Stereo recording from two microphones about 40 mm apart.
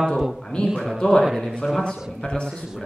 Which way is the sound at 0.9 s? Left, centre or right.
Centre.